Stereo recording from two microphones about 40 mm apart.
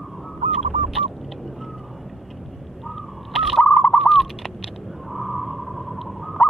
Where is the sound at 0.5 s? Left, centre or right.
Centre.